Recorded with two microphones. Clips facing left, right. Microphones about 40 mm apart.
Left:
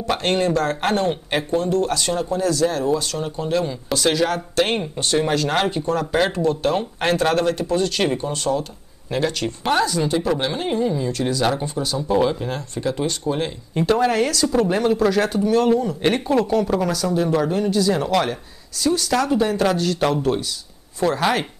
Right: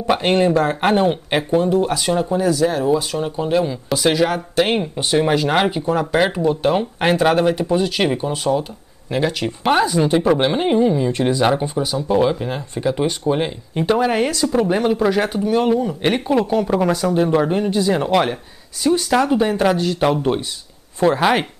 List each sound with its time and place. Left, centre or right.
0.0 s speech: centre